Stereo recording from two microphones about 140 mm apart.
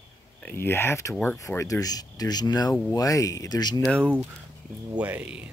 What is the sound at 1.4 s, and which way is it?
Speech, 20° left (ahead or behind).